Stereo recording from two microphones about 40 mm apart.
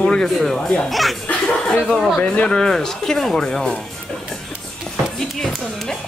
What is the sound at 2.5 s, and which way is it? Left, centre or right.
Speech, centre.